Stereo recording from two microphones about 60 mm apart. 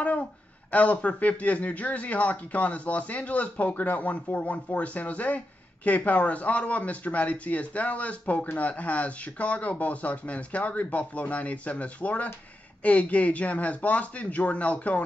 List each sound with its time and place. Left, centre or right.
0.2 s speech: left